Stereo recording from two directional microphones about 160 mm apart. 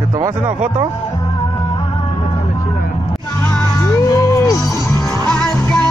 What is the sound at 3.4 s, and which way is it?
Music, 15° left (ahead or behind).